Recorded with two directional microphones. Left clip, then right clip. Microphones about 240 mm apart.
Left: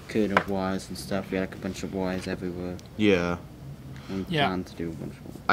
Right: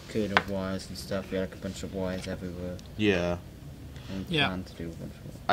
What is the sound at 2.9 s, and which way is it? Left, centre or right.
Speech, right.